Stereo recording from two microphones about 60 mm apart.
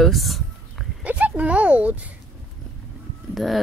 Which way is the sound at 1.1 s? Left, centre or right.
Right.